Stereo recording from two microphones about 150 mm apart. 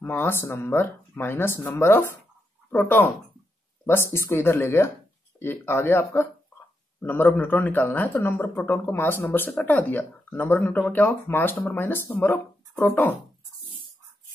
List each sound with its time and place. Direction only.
0.0 s speech: 15° left (ahead or behind)